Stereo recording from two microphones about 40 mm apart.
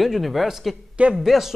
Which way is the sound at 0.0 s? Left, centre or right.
Centre.